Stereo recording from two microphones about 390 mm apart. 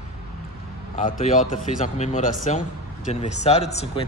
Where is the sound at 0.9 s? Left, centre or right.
Centre.